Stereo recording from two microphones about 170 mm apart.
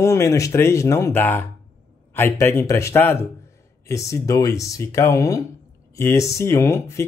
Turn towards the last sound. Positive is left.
turn(degrees=15)  # may be behind; listen again after turning